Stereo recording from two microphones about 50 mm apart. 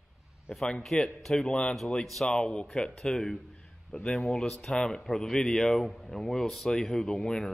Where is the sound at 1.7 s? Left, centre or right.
Centre.